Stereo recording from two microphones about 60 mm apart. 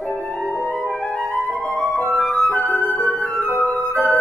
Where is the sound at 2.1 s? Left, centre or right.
Centre.